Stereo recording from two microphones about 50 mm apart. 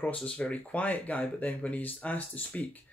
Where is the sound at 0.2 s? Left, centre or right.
Left.